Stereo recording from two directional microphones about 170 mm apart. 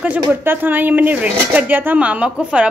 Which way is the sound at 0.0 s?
10° right (ahead or behind).